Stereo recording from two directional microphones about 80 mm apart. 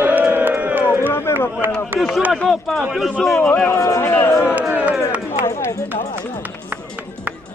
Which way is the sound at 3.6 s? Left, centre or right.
Left.